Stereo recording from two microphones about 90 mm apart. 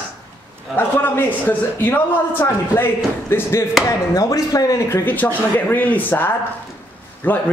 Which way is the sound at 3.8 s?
40° left (ahead or behind).